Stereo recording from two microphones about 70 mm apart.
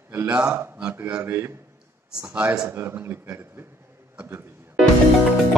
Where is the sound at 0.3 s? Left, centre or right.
Centre.